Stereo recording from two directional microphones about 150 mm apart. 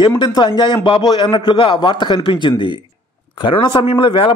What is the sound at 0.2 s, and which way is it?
A man's voice, 30° left (ahead or behind).